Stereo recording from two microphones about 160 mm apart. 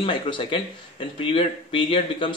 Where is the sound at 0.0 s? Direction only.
30° left (ahead or behind).